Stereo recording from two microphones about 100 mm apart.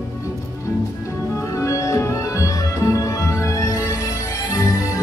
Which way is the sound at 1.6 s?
35° left (ahead or behind).